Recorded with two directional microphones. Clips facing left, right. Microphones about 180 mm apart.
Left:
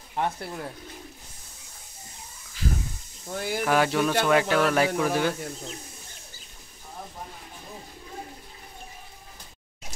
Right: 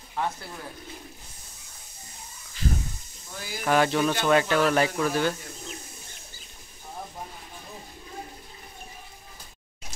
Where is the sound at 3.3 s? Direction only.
65° left (ahead or behind).